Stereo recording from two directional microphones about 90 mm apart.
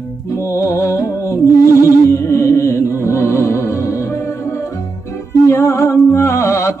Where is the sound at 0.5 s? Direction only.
35° left (ahead or behind).